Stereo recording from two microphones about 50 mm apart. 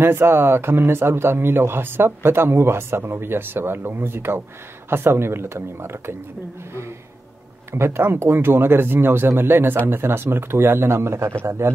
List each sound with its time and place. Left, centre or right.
0.0 s a man's voice: right
7.7 s a man's voice: right